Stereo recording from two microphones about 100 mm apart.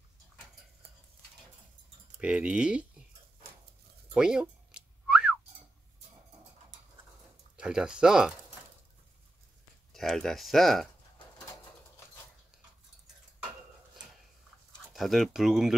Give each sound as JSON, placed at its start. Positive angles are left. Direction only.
{"t": 2.1, "sound": "speech", "side_deg": -10}
{"t": 4.1, "sound": "whistling", "side_deg": -5}
{"t": 7.5, "sound": "speech", "side_deg": -10}
{"t": 9.9, "sound": "speech", "side_deg": 5}
{"t": 14.9, "sound": "speech", "side_deg": 0}